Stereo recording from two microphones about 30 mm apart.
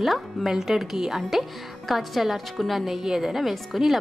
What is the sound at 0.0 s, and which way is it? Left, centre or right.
Speech, centre.